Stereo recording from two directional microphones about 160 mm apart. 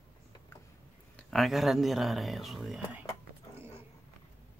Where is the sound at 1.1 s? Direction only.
Centre (ahead or behind).